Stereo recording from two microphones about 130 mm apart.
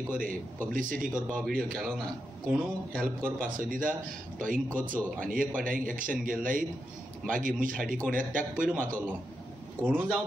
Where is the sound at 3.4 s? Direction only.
90° right.